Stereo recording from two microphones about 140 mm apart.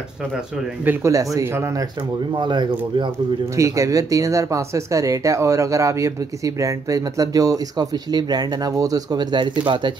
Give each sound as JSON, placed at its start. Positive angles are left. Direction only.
{"t": 0.8, "sound": "speech", "side_deg": -20}
{"t": 2.3, "sound": "speech", "side_deg": -35}
{"t": 3.5, "sound": "speech", "side_deg": -20}